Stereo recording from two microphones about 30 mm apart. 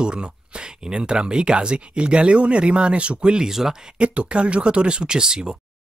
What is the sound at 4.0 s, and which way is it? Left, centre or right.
Speech, right.